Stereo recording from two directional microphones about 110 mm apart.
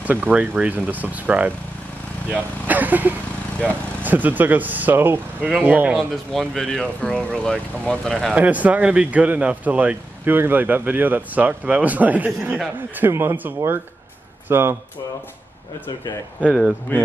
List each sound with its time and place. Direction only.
0.0 s speech: 15° right (ahead or behind)
6.3 s speech: centre (ahead or behind)
8.4 s a man's voice: 15° right (ahead or behind)
16.9 s speech: 15° left (ahead or behind)